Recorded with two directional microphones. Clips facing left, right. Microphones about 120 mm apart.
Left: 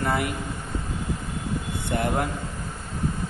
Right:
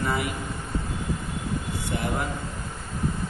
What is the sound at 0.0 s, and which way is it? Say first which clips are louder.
Speech: left 2 dB; 55° left (ahead or behind).